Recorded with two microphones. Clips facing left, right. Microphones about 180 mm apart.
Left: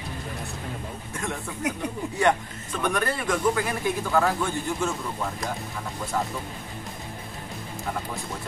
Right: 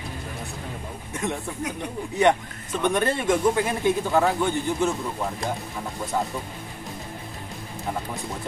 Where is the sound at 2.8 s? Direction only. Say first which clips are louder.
Right 4 dB; 20° right (ahead or behind).